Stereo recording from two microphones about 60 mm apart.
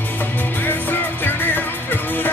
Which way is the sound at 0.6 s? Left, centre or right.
Left.